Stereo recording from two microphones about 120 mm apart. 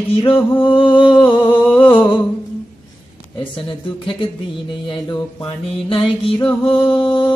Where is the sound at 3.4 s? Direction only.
45° left (ahead or behind).